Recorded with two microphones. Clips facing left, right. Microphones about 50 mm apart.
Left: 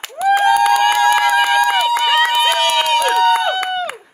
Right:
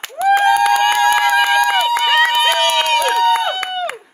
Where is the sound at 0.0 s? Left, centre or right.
Right.